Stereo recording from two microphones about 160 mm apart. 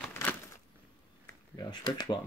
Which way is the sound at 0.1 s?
10° left (ahead or behind).